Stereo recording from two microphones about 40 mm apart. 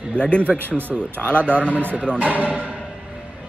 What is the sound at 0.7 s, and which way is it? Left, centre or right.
Speech, right.